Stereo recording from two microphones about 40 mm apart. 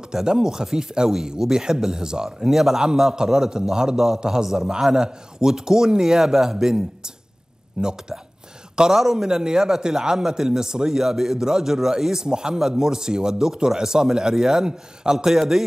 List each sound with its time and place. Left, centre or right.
0.1 s speech: centre